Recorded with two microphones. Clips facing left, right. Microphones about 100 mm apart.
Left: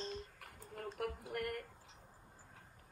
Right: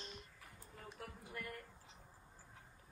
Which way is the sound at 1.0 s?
70° left (ahead or behind).